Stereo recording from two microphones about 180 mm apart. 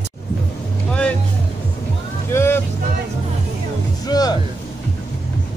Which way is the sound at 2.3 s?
15° left (ahead or behind).